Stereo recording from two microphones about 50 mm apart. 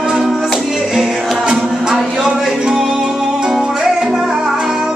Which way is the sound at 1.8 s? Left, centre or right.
Centre.